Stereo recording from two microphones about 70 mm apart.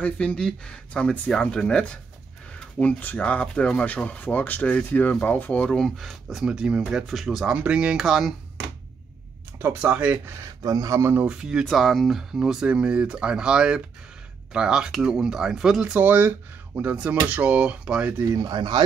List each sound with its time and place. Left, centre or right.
0.0 s speech: centre
7.4 s speech: centre
9.8 s speech: right
10.4 s speech: right
11.2 s speech: centre
15.8 s speech: right
16.9 s speech: centre
18.2 s speech: right
18.5 s speech: right